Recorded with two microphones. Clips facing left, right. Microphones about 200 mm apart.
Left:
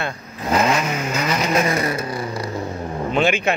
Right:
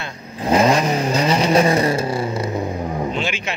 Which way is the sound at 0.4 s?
30° right (ahead or behind).